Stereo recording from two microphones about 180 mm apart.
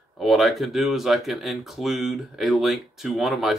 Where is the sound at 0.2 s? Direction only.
Centre (ahead or behind).